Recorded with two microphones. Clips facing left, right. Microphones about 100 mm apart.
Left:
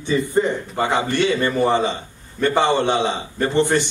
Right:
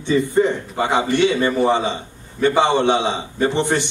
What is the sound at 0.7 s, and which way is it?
A man's voice, 5° right (ahead or behind).